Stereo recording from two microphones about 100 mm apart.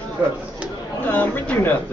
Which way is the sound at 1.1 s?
20° left (ahead or behind).